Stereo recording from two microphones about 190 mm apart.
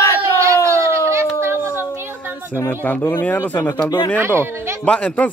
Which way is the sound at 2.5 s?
10° left (ahead or behind).